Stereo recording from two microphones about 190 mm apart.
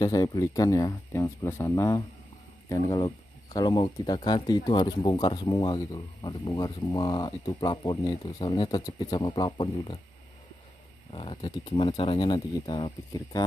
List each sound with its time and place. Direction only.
0.0 s speech: 20° left (ahead or behind)
11.1 s speech: 30° left (ahead or behind)